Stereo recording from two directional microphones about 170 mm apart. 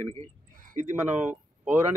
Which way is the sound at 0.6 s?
55° right (ahead or behind).